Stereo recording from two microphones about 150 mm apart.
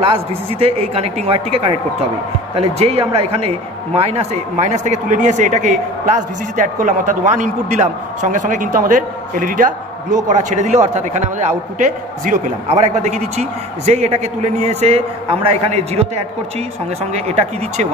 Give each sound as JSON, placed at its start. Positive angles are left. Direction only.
{"t": 0.0, "sound": "speech", "side_deg": -40}
{"t": 10.2, "sound": "a man's voice", "side_deg": -50}
{"t": 12.6, "sound": "a man's voice", "side_deg": -50}